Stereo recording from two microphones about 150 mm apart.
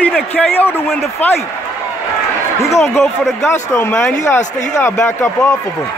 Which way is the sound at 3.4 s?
15° left (ahead or behind).